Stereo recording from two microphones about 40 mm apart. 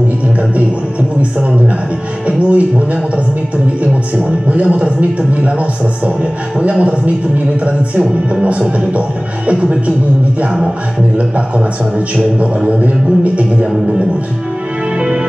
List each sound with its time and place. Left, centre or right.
2.2 s a man's voice: right
4.5 s a man's voice: right
8.3 s a man's voice: right
11.1 s a man's voice: right
12.6 s a man's voice: right